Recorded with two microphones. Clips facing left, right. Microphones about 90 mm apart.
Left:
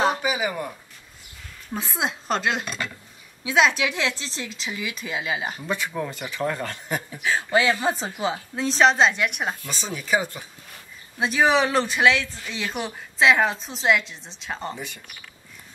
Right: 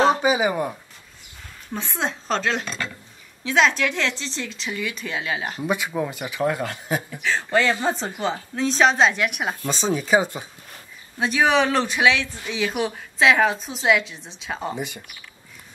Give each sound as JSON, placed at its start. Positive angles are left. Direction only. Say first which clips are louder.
{"t": 0.1, "sound": "a sound", "louder": "right 6 dB", "side_deg": -25}
{"t": 1.7, "sound": "speech", "louder": "right 1 dB", "side_deg": 5}
{"t": 5.6, "sound": "speech", "louder": "right 3 dB", "side_deg": -15}
{"t": 7.1, "sound": "speech", "louder": "even", "side_deg": 15}
{"t": 9.6, "sound": "speech", "louder": "right 9 dB", "side_deg": -25}
{"t": 11.1, "sound": "speech", "louder": "right 1 dB", "side_deg": 0}